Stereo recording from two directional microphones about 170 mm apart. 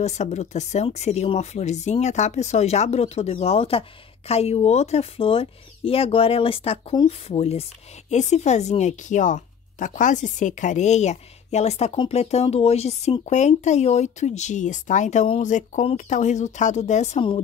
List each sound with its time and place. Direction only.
0.0 s speech: 40° left (ahead or behind)